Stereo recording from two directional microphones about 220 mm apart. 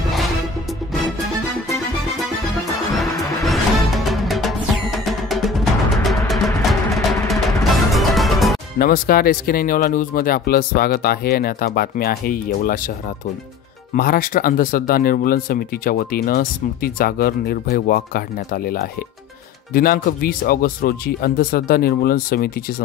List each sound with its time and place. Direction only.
0.1 s music: centre (ahead or behind)
4.1 s music: centre (ahead or behind)
8.7 s speech: 40° left (ahead or behind)
13.9 s speech: 40° left (ahead or behind)